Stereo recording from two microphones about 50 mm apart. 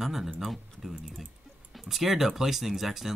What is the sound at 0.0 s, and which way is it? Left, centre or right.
Speech, centre.